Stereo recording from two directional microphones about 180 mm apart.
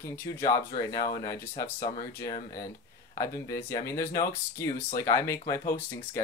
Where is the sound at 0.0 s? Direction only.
15° left (ahead or behind).